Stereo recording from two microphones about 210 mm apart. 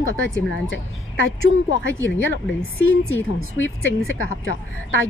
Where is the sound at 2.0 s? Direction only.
65° left (ahead or behind).